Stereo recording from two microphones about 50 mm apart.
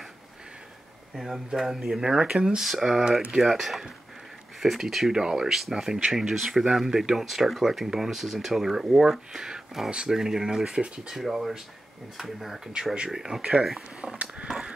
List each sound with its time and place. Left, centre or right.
1.1 s speech: centre
3.1 s speech: centre
3.3 s speech: centre
14.1 s a sound: right